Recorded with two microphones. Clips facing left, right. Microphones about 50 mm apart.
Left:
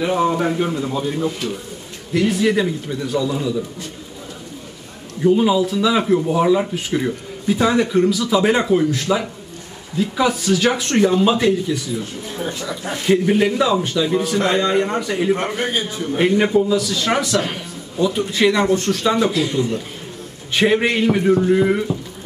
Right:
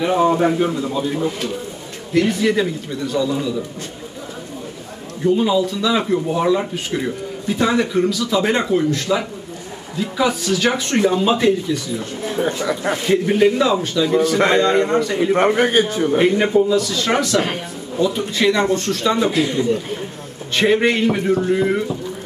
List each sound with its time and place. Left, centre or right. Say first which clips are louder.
0.0 s a man's voice: right 2 dB; centre
5.2 s speech: left 1 dB; centre
12.4 s speech: right 6 dB; right
13.2 s speech: right 1 dB; centre
15.3 s a man's voice: right 7 dB; right
16.2 s speech: left 1 dB; centre
20.5 s speech: right 1 dB; centre